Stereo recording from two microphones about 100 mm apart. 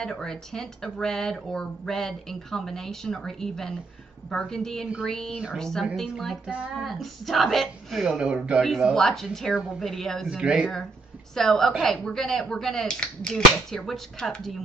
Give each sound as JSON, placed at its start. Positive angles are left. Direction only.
{"t": 0.0, "sound": "a woman's voice", "side_deg": 5}
{"t": 10.3, "sound": "speech", "side_deg": -10}
{"t": 11.3, "sound": "speech", "side_deg": 5}